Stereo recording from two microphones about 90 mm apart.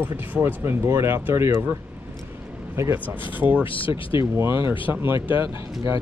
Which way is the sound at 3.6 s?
75° left (ahead or behind).